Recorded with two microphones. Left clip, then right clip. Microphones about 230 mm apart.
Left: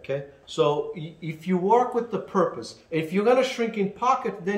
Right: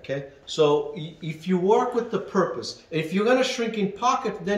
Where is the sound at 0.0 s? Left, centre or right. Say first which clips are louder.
Even; centre.